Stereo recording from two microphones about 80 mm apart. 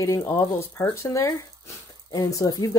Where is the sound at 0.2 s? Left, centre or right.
Left.